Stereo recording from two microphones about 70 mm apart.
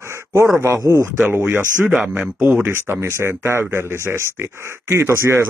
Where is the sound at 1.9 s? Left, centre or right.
Centre.